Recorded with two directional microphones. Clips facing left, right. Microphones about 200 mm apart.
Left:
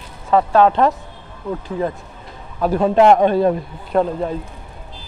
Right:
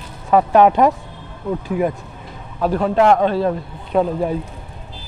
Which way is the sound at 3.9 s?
5° right (ahead or behind).